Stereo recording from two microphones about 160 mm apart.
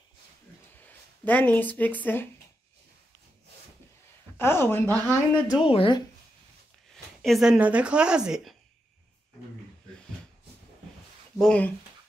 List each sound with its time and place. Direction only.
0.7 s speech: 10° left (ahead or behind)
4.4 s speech: 15° left (ahead or behind)
5.7 s speech: 30° left (ahead or behind)
7.2 s a woman's voice: centre (ahead or behind)
11.3 s a woman's voice: 5° left (ahead or behind)